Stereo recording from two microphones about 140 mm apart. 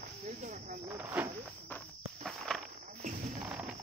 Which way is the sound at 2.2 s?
Centre (ahead or behind).